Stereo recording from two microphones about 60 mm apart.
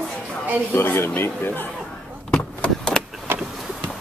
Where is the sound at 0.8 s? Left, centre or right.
Left.